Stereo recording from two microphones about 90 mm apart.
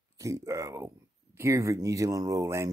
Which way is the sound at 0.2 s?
35° right (ahead or behind).